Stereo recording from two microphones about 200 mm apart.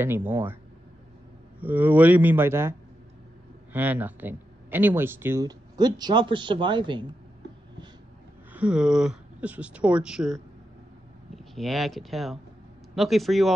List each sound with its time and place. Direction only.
0.0 s speech: 10° right (ahead or behind)
1.6 s speech: 10° right (ahead or behind)
3.7 s speech: 10° right (ahead or behind); by 7.2 s 25° right (ahead or behind)
8.5 s speech: 5° right (ahead or behind)
11.5 s speech: centre (ahead or behind)